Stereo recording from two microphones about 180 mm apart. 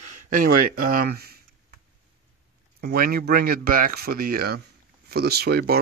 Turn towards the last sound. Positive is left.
turn(degrees=-65)  # may be behind; listen again after turning